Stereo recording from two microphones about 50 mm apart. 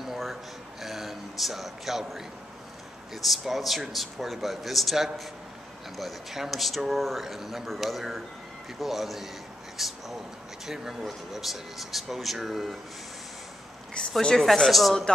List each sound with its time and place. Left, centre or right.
0.0 s a sound: centre
3.2 s speech: centre
14.0 s speech: centre
14.3 s speech: centre